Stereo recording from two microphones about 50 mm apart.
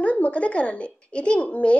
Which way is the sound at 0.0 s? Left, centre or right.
Left.